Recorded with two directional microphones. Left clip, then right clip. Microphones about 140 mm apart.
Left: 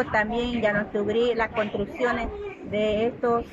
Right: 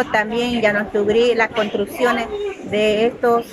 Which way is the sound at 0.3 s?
30° right (ahead or behind).